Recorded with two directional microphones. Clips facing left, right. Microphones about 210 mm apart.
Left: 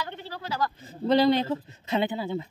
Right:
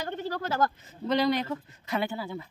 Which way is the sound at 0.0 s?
45° right (ahead or behind).